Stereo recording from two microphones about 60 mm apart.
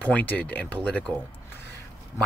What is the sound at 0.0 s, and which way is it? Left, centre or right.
Speech, left.